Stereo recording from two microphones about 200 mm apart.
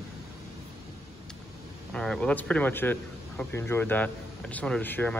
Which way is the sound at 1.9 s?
5° left (ahead or behind).